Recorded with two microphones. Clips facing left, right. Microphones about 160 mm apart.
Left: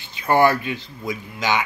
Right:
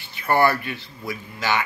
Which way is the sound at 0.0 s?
20° left (ahead or behind).